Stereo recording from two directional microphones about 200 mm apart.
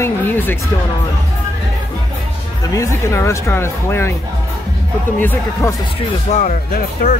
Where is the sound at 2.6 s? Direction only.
15° left (ahead or behind).